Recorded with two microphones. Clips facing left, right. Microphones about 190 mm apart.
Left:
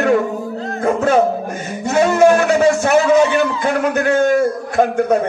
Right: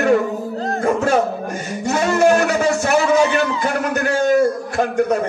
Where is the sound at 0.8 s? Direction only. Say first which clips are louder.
Left 3 dB; 55° left (ahead or behind).